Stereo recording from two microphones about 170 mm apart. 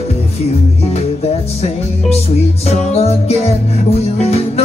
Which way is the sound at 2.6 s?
40° left (ahead or behind).